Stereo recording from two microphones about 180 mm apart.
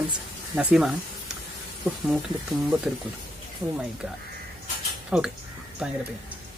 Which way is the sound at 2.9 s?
Centre (ahead or behind).